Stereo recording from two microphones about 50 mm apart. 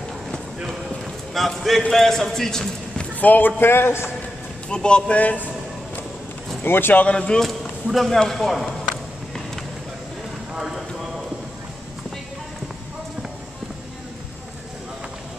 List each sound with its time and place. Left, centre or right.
1.0 s a sound: centre
1.9 s speech: centre
3.2 s a man's voice: left
4.6 s a man's voice: centre
5.2 s a man's voice: left
6.6 s a man's voice: left
7.1 s a man's voice: left
7.4 s speech: centre
10.5 s clip-clop: centre